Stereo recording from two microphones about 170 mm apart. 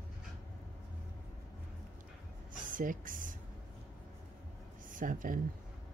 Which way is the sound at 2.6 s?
50° right (ahead or behind).